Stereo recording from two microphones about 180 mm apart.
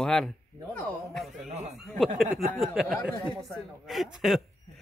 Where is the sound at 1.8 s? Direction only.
Centre (ahead or behind).